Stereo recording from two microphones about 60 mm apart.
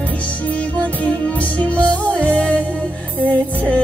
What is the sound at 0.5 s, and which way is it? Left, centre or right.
Music, left.